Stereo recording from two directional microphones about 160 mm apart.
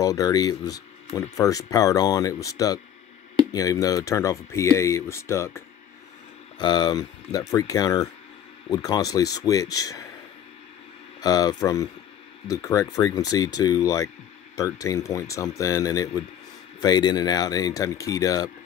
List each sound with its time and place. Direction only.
0.0 s speech: 20° left (ahead or behind)
6.6 s speech: 25° left (ahead or behind)
11.1 s speech: 25° left (ahead or behind)